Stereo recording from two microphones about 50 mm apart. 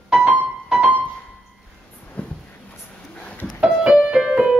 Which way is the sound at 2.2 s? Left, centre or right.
Left.